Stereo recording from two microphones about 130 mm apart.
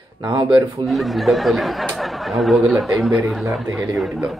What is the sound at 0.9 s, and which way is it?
Speech, centre (ahead or behind).